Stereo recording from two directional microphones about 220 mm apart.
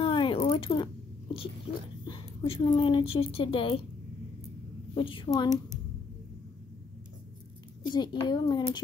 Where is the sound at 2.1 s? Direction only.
20° left (ahead or behind).